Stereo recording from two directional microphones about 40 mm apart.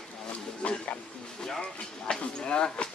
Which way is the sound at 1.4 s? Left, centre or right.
Centre.